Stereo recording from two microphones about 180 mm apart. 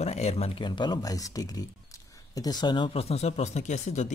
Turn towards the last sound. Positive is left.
turn(degrees=40)  # may be behind; listen again after turning